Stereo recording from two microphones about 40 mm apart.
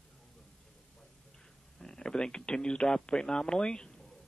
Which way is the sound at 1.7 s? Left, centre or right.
Centre.